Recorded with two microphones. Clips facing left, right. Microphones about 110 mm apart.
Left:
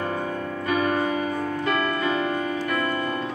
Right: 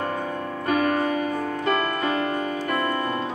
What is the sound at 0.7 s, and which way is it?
Music, 45° right (ahead or behind).